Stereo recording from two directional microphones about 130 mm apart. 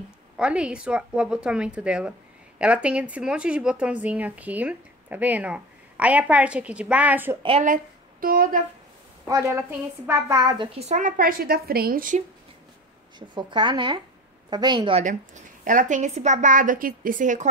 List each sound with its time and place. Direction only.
0.4 s speech: 10° right (ahead or behind)
7.6 s speech: 90° right
9.3 s a woman's voice: 20° right (ahead or behind)
10.3 s a woman's voice: 30° right (ahead or behind)
10.7 s a woman's voice: 55° right (ahead or behind); by 12.2 s 90° right
13.3 s a woman's voice: 35° right (ahead or behind)
15.0 s a woman's voice: 85° right